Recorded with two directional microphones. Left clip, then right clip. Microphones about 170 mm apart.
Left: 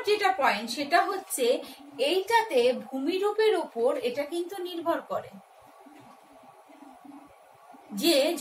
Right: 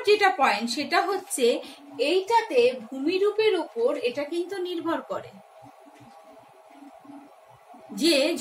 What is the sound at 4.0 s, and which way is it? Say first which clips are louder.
A woman's voice: right 2 dB; 20° right (ahead or behind).